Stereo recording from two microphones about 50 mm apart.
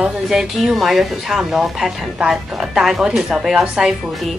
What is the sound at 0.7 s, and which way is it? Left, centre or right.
A woman's voice, centre.